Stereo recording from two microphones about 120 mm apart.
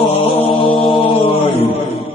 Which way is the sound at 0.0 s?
55° left (ahead or behind).